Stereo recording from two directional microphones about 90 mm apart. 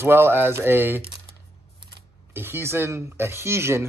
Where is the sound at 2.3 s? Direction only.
25° right (ahead or behind).